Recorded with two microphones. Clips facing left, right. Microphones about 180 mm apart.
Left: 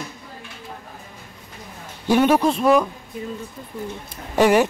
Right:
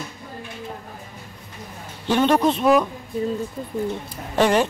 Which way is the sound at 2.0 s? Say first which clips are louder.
Left 1 dB; 10° left (ahead or behind).